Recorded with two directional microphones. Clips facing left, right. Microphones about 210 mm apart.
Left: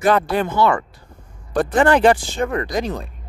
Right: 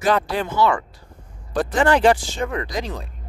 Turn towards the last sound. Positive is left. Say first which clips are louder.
# left 4 dB
turn(degrees=50)  # may be behind; listen again after turning